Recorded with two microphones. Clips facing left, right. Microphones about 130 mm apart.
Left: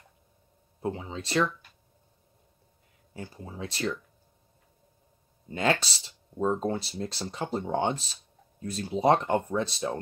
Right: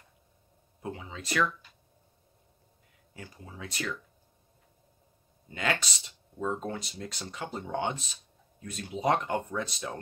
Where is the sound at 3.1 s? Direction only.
30° left (ahead or behind).